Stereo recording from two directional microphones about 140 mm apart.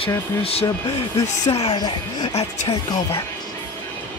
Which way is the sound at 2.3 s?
50° left (ahead or behind).